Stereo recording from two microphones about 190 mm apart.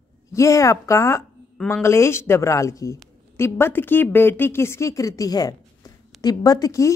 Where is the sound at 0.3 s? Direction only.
15° left (ahead or behind).